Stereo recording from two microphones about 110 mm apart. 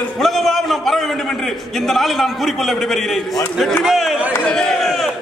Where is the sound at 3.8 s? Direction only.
Centre (ahead or behind).